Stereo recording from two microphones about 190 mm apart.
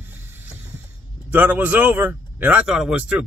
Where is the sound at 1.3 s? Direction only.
10° right (ahead or behind).